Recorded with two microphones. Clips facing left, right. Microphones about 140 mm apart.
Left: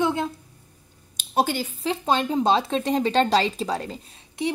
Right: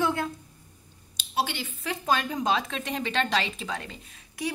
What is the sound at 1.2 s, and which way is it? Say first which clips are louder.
Speech: left 6 dB; 45° left (ahead or behind).